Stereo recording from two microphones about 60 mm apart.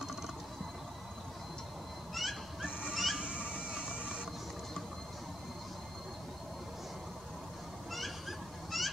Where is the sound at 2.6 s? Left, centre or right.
Centre.